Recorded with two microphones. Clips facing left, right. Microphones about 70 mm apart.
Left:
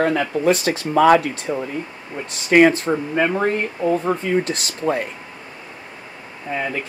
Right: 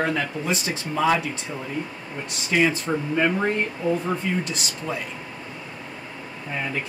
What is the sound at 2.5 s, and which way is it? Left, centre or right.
Speech, left.